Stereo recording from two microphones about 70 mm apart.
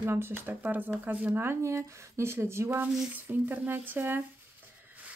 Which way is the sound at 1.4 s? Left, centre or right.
Right.